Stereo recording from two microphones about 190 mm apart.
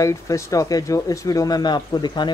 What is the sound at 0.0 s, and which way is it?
Speech, 15° left (ahead or behind).